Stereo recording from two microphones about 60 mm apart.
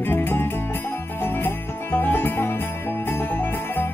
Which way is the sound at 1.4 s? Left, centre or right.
Left.